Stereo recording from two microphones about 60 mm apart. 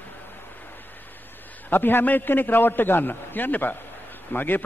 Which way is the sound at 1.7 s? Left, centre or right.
Left.